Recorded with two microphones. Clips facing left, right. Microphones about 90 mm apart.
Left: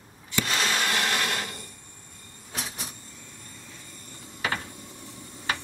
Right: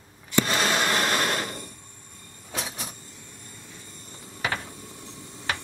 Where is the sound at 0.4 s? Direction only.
45° right (ahead or behind).